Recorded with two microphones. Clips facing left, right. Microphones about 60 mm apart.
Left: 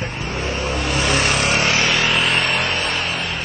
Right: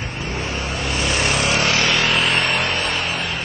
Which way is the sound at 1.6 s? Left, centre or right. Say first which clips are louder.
Left 1 dB; left.